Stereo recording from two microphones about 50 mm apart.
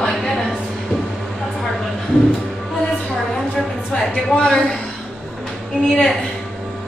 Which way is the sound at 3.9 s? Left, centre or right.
Centre.